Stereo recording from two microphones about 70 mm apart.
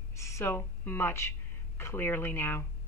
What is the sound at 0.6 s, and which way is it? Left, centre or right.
A woman's voice, left.